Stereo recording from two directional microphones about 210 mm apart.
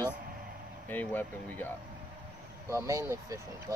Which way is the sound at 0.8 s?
10° left (ahead or behind).